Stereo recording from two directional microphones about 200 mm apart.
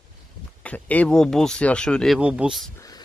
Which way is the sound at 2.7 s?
15° left (ahead or behind).